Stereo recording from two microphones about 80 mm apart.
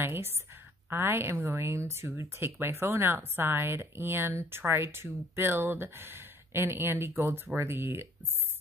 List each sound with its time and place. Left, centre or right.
0.0 s a woman's voice: right